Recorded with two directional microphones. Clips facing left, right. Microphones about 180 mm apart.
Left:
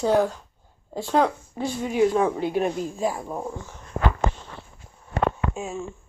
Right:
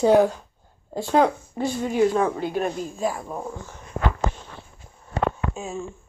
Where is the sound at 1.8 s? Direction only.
10° left (ahead or behind).